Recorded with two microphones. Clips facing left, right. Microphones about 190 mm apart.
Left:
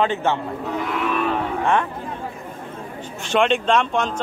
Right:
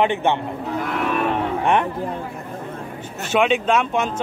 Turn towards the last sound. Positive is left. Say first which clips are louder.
# even
turn(degrees=-10)  # may be behind; listen again after turning